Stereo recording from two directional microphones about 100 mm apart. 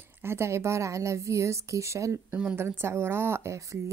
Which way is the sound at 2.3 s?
15° right (ahead or behind).